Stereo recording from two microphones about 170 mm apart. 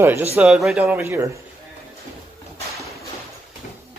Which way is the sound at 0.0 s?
15° right (ahead or behind).